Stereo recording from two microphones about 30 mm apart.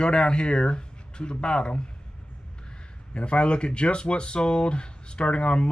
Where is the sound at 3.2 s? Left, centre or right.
Left.